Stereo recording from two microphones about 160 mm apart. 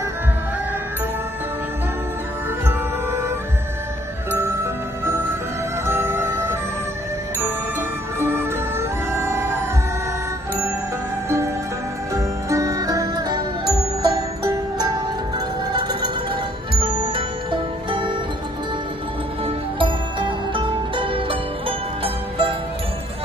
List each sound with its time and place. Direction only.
2.6 s music: 15° right (ahead or behind)
5.9 s music: 15° right (ahead or behind)
8.2 s music: 15° right (ahead or behind)
12.1 s music: 20° right (ahead or behind)
19.4 s music: 30° right (ahead or behind)